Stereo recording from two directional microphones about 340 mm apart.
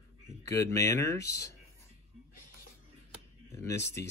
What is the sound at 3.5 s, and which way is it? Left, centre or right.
Speech, centre.